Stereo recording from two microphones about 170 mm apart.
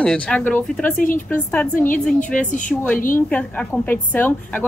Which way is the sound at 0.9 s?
55° left (ahead or behind).